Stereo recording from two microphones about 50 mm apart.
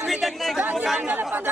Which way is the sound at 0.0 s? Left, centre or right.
Centre.